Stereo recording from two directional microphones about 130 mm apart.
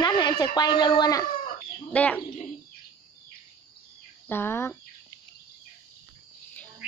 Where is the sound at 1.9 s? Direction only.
10° left (ahead or behind).